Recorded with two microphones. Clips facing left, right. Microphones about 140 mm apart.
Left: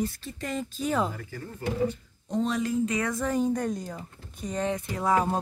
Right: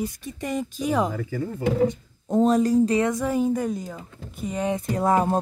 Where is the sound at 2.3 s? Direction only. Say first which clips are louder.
Right 8 dB; 45° right (ahead or behind).